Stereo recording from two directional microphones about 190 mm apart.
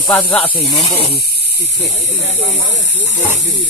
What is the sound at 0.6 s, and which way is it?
Speech, 20° left (ahead or behind).